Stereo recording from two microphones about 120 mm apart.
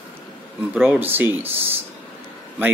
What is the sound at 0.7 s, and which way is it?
Speech, 15° right (ahead or behind).